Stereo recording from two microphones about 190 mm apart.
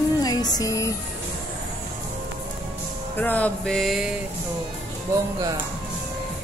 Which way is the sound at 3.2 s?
10° left (ahead or behind).